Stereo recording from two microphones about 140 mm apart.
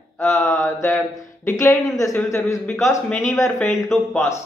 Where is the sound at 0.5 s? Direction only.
20° left (ahead or behind).